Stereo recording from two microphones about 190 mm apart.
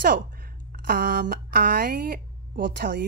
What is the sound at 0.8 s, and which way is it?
A woman's voice, 50° right (ahead or behind).